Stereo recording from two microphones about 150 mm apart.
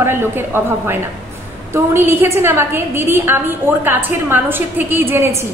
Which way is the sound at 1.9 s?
15° right (ahead or behind).